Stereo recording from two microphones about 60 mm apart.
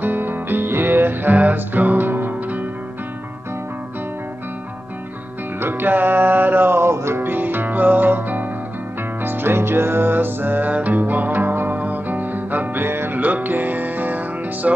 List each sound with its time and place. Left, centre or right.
0.0 s music: right
5.6 s music: right
7.2 s music: right
13.2 s music: right